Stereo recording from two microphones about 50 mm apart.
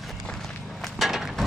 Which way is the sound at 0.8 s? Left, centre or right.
Centre.